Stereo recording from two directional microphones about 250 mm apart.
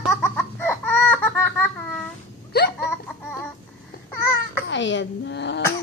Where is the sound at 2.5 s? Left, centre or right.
Left.